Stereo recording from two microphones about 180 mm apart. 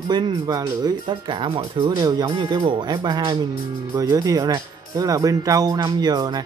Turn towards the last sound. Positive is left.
turn(degrees=-20)  # may be behind; listen again after turning